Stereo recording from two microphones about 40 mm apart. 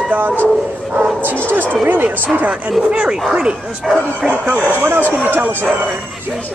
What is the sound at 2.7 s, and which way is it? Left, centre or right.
Speech, right.